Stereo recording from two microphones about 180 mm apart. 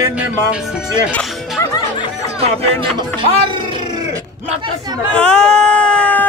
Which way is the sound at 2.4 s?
35° right (ahead or behind).